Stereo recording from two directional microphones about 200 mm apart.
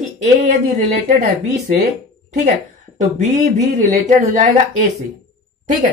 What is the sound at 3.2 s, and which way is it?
Speech, 35° right (ahead or behind).